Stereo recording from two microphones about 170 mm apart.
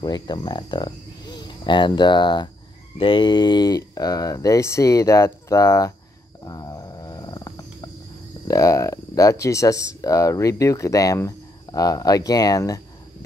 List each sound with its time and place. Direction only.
0.0 s speech: 25° left (ahead or behind)
6.4 s music: 20° left (ahead or behind)
8.5 s speech: 20° left (ahead or behind)